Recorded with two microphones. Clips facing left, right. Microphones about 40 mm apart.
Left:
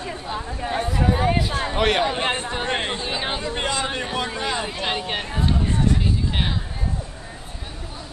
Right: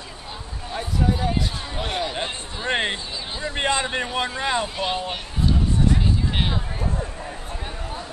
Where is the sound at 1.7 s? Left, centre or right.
Left.